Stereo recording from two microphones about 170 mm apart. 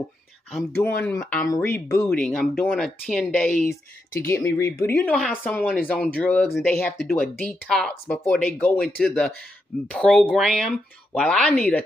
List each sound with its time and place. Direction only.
0.5 s speech: centre (ahead or behind)
0.8 s speech: 10° left (ahead or behind)
3.6 s speech: 55° left (ahead or behind)
4.3 s speech: 20° left (ahead or behind)